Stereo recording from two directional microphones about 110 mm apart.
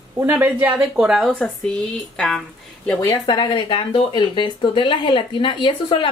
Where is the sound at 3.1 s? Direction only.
45° left (ahead or behind).